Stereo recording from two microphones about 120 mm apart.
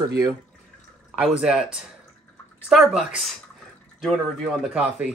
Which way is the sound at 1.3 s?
5° right (ahead or behind).